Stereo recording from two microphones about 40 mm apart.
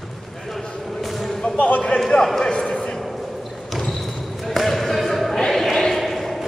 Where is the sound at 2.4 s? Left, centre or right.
Centre.